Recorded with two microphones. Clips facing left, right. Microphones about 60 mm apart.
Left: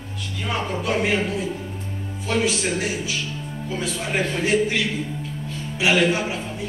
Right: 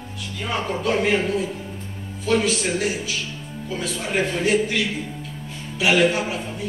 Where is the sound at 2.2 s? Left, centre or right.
Centre.